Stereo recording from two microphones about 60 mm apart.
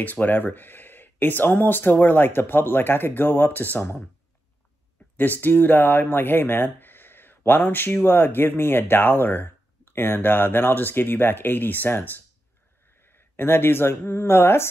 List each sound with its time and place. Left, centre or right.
0.0 s speech: left
5.1 s speech: left